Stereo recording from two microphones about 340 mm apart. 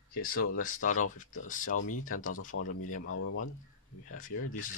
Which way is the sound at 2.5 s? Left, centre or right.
Left.